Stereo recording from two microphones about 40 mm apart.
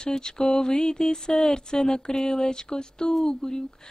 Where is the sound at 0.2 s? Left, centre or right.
Centre.